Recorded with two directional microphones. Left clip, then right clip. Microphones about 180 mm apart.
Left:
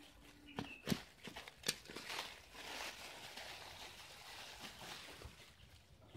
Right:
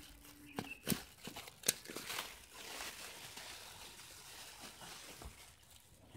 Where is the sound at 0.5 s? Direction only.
15° right (ahead or behind).